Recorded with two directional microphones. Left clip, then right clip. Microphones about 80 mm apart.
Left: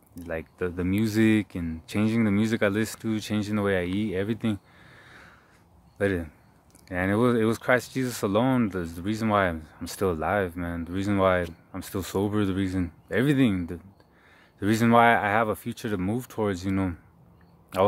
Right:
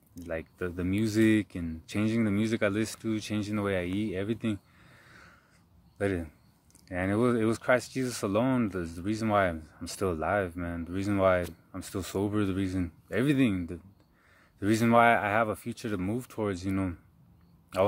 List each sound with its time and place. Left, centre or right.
0.1 s speech: left
17.7 s speech: left